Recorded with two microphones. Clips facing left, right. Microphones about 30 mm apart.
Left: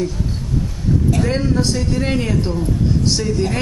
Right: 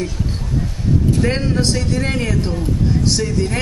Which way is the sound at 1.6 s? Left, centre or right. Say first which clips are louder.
Even; right.